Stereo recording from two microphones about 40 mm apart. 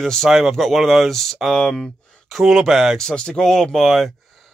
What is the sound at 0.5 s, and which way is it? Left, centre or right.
Speech, centre.